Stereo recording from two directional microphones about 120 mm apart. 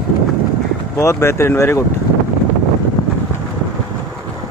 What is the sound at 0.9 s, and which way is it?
Speech, 20° left (ahead or behind).